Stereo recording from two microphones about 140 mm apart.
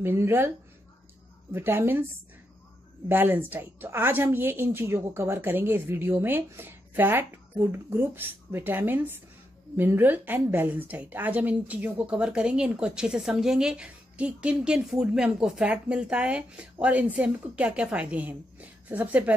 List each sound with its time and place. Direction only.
0.0 s a woman's voice: 15° right (ahead or behind)
1.5 s a woman's voice: 15° right (ahead or behind)
3.1 s a woman's voice: 15° right (ahead or behind)